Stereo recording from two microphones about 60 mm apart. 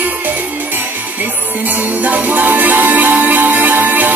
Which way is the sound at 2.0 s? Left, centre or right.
Right.